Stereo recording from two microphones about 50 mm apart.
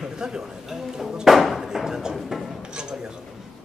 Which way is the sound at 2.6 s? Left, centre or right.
Centre.